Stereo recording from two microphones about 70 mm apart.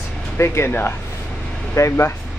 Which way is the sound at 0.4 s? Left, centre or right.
Left.